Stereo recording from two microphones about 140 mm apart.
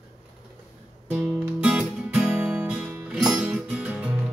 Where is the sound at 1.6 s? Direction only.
10° right (ahead or behind).